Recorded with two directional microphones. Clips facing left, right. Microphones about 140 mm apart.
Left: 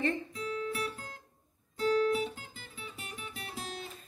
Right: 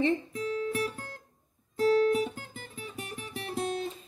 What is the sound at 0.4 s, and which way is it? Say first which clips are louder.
Guitar: right 5 dB; 35° right (ahead or behind).